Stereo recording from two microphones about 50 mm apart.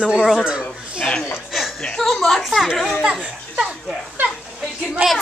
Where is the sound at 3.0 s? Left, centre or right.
Centre.